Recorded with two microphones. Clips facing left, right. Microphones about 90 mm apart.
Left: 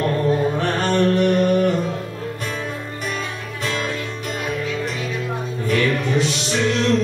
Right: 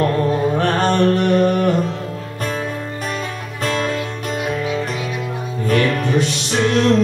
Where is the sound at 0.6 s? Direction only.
45° right (ahead or behind).